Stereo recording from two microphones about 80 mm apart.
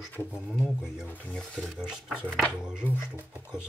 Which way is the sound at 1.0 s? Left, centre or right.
Left.